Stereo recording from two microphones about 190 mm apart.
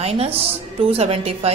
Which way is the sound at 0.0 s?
30° right (ahead or behind).